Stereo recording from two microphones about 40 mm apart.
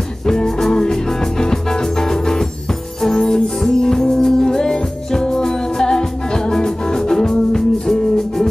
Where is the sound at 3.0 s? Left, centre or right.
Centre.